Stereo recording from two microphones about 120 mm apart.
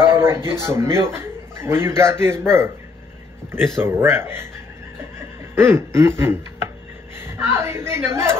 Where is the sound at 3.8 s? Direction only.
20° right (ahead or behind).